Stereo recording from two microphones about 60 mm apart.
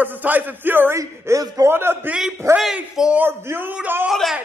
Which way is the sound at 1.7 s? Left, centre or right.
Right.